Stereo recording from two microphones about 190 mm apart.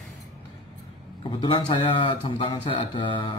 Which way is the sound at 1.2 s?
25° left (ahead or behind).